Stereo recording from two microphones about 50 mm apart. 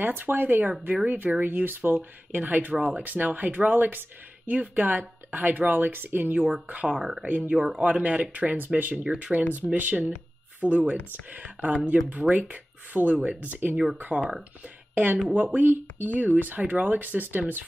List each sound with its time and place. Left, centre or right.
0.0 s speech: right
6.7 s speech: right
7.0 s speech: centre
7.2 s speech: right
15.3 s speech: right